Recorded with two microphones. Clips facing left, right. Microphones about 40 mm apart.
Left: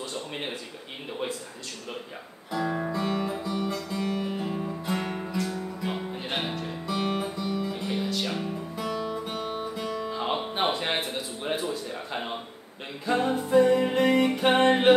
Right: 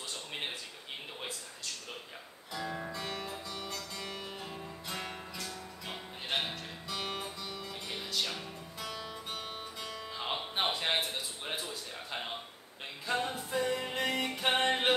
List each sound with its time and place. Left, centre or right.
0.1 s a sound: centre
2.9 s music: centre
13.0 s music: centre